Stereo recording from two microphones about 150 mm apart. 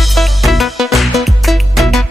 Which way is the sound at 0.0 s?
Centre (ahead or behind).